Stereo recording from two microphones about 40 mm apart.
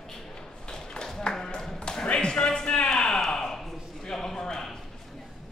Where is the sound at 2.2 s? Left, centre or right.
Left.